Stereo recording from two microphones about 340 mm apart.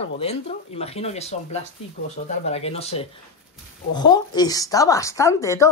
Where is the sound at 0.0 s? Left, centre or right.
Centre.